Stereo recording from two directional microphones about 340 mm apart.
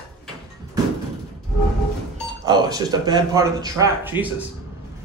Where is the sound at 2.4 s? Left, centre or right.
Centre.